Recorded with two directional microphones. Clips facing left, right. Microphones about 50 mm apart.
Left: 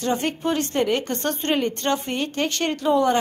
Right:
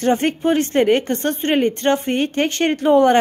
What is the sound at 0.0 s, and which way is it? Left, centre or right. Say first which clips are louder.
A woman's voice: right 6 dB; right.